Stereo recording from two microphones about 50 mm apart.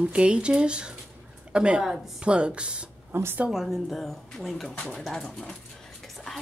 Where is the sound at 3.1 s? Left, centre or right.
Right.